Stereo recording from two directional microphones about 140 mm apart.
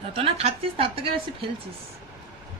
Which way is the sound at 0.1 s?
45° right (ahead or behind).